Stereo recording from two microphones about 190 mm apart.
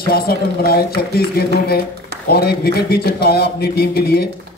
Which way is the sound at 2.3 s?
55° left (ahead or behind).